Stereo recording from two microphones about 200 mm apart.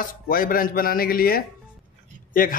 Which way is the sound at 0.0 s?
45° left (ahead or behind).